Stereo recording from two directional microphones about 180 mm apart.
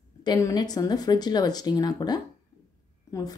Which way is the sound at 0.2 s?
20° left (ahead or behind).